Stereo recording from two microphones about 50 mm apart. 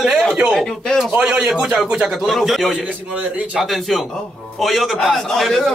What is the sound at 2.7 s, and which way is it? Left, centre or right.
Speech, right.